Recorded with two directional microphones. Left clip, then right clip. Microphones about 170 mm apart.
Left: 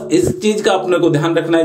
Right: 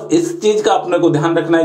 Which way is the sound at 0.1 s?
40° left (ahead or behind).